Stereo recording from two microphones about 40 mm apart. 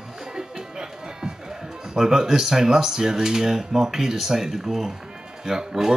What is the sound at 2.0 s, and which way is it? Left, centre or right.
Speech, centre.